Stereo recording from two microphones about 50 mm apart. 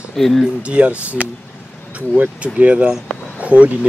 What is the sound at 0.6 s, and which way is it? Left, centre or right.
Speech, right.